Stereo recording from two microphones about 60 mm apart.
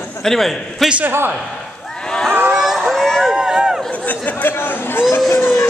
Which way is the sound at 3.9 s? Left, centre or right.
Left.